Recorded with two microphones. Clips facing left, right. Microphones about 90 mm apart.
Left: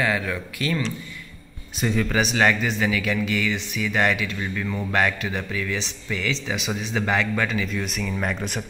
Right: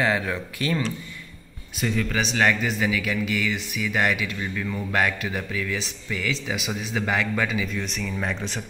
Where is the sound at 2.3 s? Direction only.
5° left (ahead or behind).